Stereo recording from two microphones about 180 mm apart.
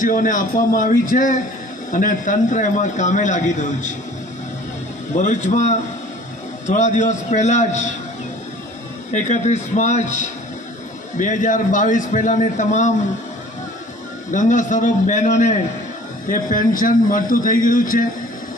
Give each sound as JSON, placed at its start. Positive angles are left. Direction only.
{"t": 0.0, "sound": "a man's voice", "side_deg": 45}
{"t": 5.1, "sound": "a man's voice", "side_deg": 45}
{"t": 9.1, "sound": "a man's voice", "side_deg": 40}
{"t": 14.3, "sound": "a man's voice", "side_deg": 45}